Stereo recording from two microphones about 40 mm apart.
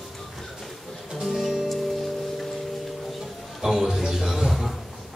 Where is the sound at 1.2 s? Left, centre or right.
Centre.